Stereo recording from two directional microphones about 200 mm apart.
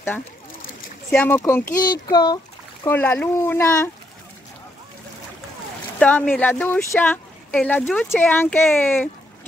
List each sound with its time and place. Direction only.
1.1 s speech: 10° left (ahead or behind)
1.8 s a child's voice: 20° left (ahead or behind)
2.9 s speech: 10° left (ahead or behind)
5.9 s speech: 5° left (ahead or behind)